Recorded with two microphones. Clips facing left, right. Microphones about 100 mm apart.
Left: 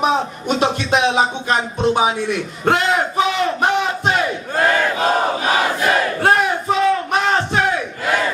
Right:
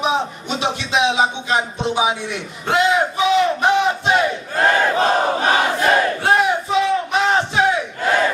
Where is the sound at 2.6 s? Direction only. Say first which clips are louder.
Even; 50° left (ahead or behind).